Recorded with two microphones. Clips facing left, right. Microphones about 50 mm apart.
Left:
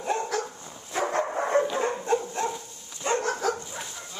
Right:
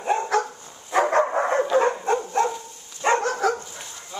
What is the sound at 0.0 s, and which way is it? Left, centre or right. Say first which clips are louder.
Dog: right 5 dB; right.